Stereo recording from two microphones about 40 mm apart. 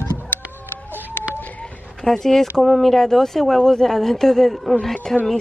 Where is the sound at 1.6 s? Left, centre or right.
Left.